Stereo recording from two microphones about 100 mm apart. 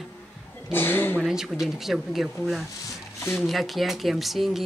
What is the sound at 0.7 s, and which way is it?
Speech, 20° left (ahead or behind).